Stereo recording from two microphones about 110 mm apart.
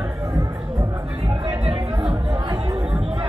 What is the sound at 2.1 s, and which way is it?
Chatter, 40° right (ahead or behind).